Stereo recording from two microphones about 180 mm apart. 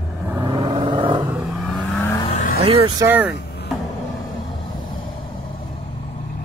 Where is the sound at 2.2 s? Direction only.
45° left (ahead or behind).